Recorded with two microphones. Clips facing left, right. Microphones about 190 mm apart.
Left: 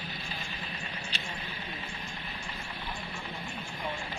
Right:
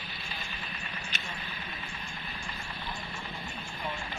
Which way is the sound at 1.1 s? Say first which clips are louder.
Left 1 dB; 30° left (ahead or behind).